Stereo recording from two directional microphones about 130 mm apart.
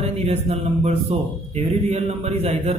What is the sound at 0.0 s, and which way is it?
A man's voice, 50° right (ahead or behind).